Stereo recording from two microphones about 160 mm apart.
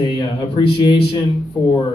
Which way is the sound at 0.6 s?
30° left (ahead or behind).